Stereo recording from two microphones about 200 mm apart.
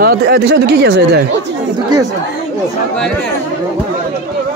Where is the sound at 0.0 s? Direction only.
50° right (ahead or behind).